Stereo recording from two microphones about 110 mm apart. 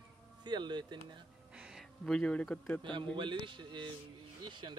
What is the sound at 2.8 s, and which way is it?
Speech, 45° right (ahead or behind).